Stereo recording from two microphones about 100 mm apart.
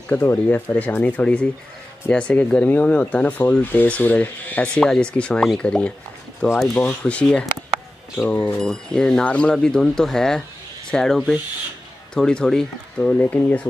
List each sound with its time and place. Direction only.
0.1 s speech: 20° left (ahead or behind)